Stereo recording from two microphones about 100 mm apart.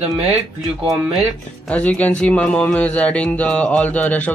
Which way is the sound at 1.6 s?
15° left (ahead or behind).